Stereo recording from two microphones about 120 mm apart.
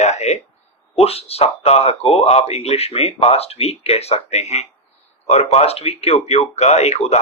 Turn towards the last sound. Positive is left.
turn(degrees=65)  # may be behind; listen again after turning